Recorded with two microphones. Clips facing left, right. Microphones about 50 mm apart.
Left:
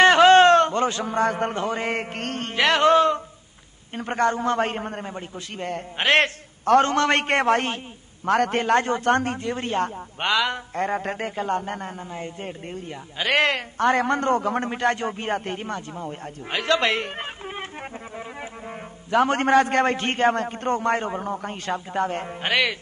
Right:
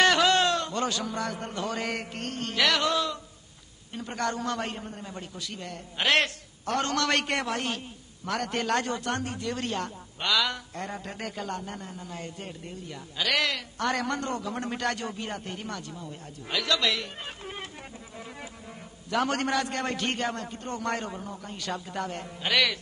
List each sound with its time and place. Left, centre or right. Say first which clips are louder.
0.0 s a man's voice: left 9 dB; left
5.1 s a woman's voice: left 4 dB; left
9.5 s a woman's voice: left 5 dB; left
12.1 s a woman's voice: left 6 dB; left
14.7 s a woman's voice: left 7 dB; left
19.0 s a woman's voice: left 7 dB; left
20.8 s a woman's voice: left 8 dB; left
21.2 s a man's voice: left 9 dB; left
21.7 s a woman's voice: left 10 dB; left